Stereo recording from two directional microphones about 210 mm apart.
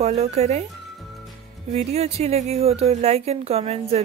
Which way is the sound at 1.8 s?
30° right (ahead or behind).